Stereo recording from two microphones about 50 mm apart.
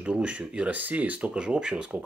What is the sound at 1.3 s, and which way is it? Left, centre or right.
Speech, centre.